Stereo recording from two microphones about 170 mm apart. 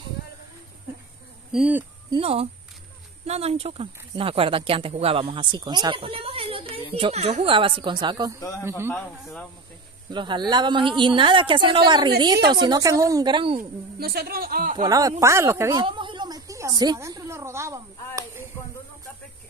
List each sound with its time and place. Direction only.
1.5 s speech: 5° right (ahead or behind)
2.0 s speech: 35° right (ahead or behind)
8.4 s a man's voice: 15° left (ahead or behind)
8.6 s speech: 15° right (ahead or behind)
9.2 s speech: centre (ahead or behind)
10.1 s speech: 25° right (ahead or behind)
13.6 s speech: 65° right (ahead or behind)
14.8 s speech: 20° right (ahead or behind)
15.8 s speech: 30° right (ahead or behind)